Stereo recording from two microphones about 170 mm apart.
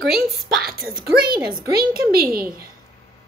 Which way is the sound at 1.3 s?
60° right (ahead or behind).